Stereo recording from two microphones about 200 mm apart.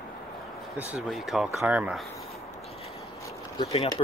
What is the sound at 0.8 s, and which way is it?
Speech, 5° right (ahead or behind).